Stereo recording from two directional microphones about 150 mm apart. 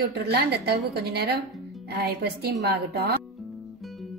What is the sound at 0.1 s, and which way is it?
A woman's voice, 90° right.